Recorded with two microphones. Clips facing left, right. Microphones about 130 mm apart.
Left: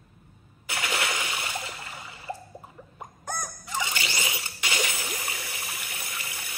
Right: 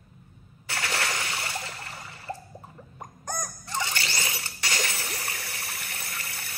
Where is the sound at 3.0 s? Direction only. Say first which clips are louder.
Even; 10° left (ahead or behind).